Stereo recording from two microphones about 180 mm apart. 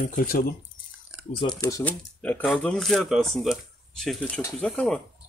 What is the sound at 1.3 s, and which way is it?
Speech, 30° left (ahead or behind).